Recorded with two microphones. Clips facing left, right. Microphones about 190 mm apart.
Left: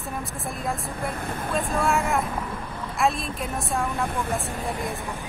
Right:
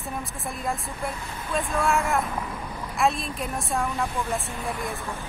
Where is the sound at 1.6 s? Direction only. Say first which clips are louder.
Even; centre (ahead or behind).